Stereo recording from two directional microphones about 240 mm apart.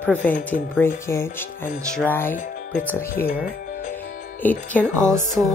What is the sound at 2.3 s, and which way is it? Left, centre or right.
Speech, left.